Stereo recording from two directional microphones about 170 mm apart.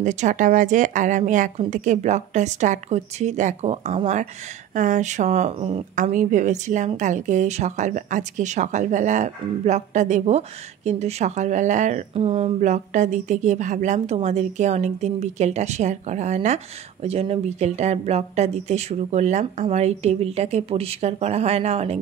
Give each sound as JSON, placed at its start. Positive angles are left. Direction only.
{"t": 0.0, "sound": "speech", "side_deg": -45}
{"t": 5.9, "sound": "speech", "side_deg": -50}
{"t": 12.5, "sound": "a woman's voice", "side_deg": -45}